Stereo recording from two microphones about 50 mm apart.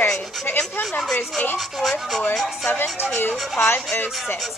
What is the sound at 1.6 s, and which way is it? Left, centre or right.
Speech, centre.